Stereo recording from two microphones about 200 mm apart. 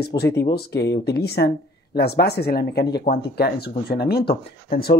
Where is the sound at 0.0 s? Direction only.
55° left (ahead or behind).